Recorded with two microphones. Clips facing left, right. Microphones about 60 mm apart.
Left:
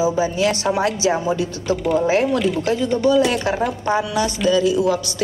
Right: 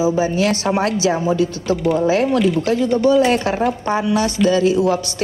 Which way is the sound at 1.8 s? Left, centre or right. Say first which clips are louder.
Right 2 dB; centre.